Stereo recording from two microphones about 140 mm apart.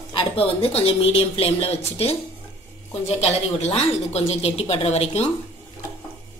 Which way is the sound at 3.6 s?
50° left (ahead or behind).